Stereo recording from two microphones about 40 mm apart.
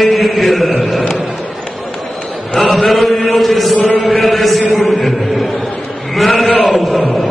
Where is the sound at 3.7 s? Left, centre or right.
Left.